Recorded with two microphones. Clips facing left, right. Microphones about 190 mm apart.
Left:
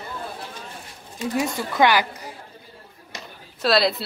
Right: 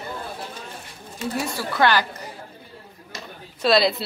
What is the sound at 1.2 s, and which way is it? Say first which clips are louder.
Speech: left 3 dB; 15° left (ahead or behind).